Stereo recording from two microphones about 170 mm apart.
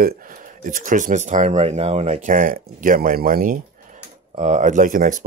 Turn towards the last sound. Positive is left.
turn(degrees=-55)  # may be behind; listen again after turning